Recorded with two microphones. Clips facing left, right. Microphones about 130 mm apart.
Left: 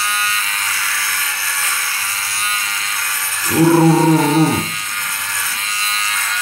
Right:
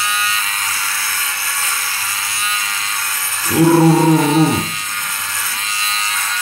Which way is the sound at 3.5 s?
5° right (ahead or behind).